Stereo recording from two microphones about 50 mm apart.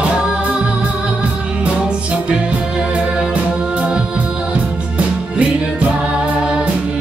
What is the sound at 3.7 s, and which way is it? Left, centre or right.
Music, centre.